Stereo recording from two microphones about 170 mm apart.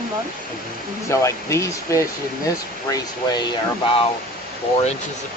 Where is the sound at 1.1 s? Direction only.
15° left (ahead or behind).